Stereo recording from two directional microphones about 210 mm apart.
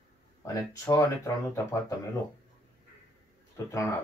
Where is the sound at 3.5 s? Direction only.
15° left (ahead or behind).